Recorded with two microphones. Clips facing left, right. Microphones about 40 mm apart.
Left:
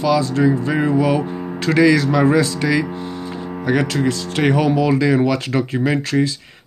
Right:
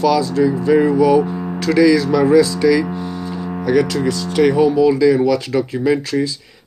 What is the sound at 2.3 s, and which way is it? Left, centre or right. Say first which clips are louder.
Speech: right 4 dB; left.